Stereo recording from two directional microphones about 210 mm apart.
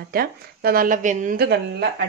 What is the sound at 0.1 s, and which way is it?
Speech, 45° right (ahead or behind).